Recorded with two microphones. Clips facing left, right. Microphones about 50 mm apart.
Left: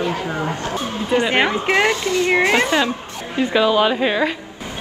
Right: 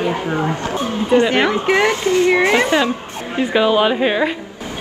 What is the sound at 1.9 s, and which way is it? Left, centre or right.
A woman's voice, right.